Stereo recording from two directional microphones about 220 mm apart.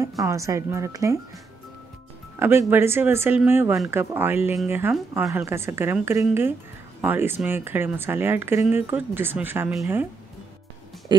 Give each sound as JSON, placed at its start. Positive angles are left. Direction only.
{"t": 0.2, "sound": "speech", "side_deg": -15}
{"t": 2.3, "sound": "speech", "side_deg": -10}
{"t": 11.1, "sound": "speech", "side_deg": -20}